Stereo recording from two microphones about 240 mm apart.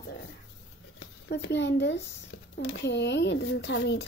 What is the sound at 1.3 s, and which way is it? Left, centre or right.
A woman's voice, left.